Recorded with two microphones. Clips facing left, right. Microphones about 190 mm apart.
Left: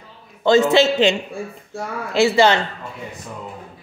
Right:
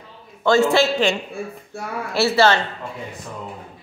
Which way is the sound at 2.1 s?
15° left (ahead or behind).